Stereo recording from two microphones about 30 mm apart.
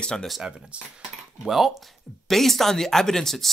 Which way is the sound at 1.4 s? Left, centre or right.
Centre.